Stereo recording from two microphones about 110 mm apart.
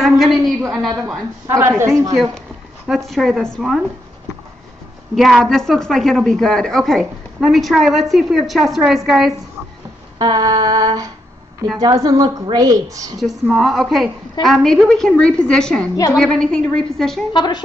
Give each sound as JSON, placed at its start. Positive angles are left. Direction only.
{"t": 0.0, "sound": "a sound", "side_deg": 0}
{"t": 0.7, "sound": "a woman's voice", "side_deg": -5}
{"t": 1.5, "sound": "a woman's voice", "side_deg": -20}
{"t": 2.9, "sound": "a woman's voice", "side_deg": 0}
{"t": 5.1, "sound": "a woman's voice", "side_deg": 0}
{"t": 10.1, "sound": "a sound", "side_deg": -40}
{"t": 13.5, "sound": "a woman's voice", "side_deg": 0}
{"t": 17.3, "sound": "a woman's voice", "side_deg": 45}